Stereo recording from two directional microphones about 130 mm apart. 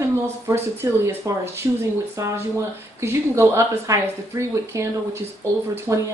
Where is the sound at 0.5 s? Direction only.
25° right (ahead or behind).